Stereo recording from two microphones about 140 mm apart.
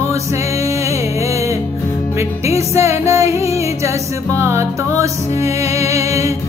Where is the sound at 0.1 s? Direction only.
20° right (ahead or behind).